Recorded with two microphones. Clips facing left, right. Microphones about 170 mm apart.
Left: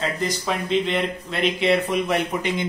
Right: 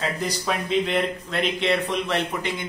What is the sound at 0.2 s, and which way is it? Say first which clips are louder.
Speech: left 1 dB; 5° right (ahead or behind).